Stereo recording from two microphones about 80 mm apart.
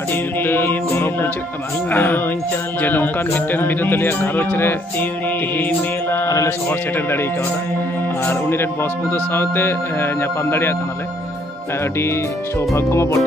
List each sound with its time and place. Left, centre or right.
0.1 s a man's voice: left
6.2 s mantra: left
6.7 s a man's voice: left
8.3 s a man's voice: left
12.0 s speech: left